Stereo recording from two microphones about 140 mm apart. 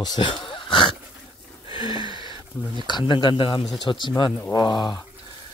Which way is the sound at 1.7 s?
35° left (ahead or behind).